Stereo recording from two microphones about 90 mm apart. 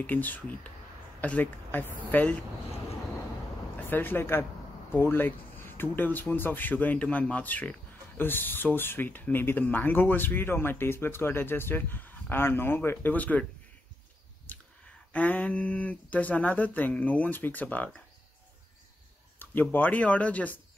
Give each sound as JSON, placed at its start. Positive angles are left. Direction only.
{"t": 0.0, "sound": "speech", "side_deg": 20}
{"t": 3.9, "sound": "speech", "side_deg": 25}
{"t": 15.1, "sound": "speech", "side_deg": 15}
{"t": 19.3, "sound": "speech", "side_deg": 20}